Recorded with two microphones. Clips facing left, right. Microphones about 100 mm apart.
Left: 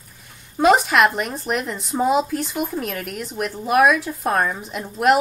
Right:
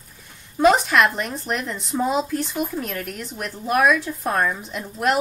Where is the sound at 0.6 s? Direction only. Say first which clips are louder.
Left 1 dB; 5° left (ahead or behind).